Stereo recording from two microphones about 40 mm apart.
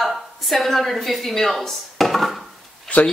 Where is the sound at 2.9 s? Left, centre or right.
Left.